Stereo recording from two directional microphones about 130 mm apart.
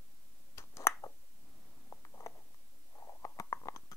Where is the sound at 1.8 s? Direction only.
25° left (ahead or behind).